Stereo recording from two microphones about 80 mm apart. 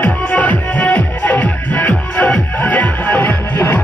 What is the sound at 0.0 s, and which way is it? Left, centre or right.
Music, centre.